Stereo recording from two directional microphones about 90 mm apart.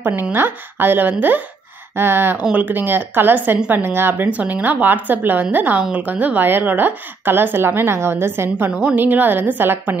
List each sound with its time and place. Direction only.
0.3 s a woman's voice: 25° right (ahead or behind)